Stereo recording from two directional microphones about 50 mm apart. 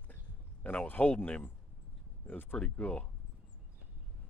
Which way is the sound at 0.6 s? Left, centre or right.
Left.